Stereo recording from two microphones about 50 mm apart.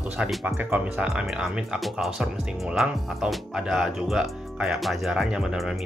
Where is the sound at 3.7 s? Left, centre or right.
Centre.